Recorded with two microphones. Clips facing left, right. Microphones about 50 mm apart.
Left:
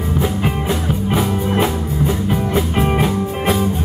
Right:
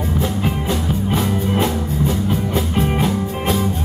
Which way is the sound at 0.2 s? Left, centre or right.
Centre.